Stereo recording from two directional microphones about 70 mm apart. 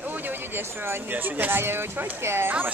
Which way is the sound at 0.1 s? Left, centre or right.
Right.